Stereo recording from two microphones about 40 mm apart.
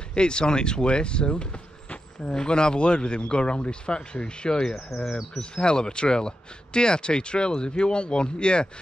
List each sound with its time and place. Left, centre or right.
0.1 s speech: left
4.9 s speech: centre
5.4 s speech: left